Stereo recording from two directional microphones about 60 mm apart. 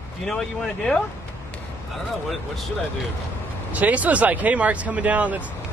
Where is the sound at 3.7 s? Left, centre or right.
Right.